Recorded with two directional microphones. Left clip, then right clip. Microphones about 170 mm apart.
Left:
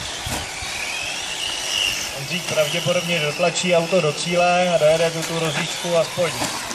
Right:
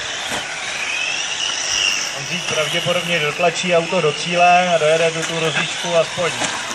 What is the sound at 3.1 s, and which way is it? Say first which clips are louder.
Speech: right 3 dB; 25° left (ahead or behind).